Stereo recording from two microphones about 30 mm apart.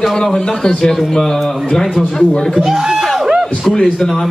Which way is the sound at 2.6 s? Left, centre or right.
Centre.